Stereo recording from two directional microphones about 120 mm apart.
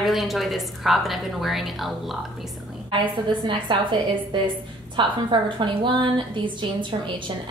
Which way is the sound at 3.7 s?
40° right (ahead or behind).